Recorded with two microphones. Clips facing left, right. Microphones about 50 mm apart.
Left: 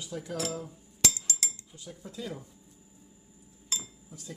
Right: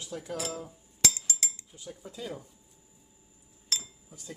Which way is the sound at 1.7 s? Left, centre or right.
Centre.